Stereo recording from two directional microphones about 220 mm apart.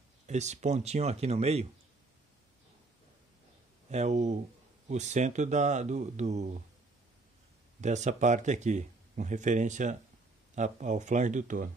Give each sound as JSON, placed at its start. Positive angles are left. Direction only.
{"t": 0.3, "sound": "speech", "side_deg": -30}
{"t": 3.9, "sound": "speech", "side_deg": -30}
{"t": 7.8, "sound": "speech", "side_deg": -30}